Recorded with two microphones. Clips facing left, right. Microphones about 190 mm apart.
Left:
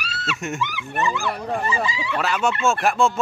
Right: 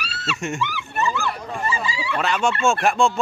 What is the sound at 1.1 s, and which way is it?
Speech, 15° left (ahead or behind).